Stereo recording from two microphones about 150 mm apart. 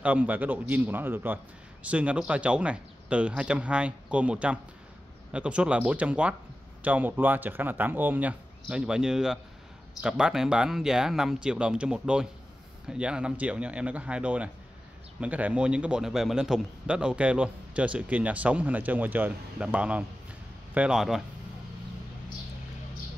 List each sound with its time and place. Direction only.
0.0 s a man's voice: 10° right (ahead or behind)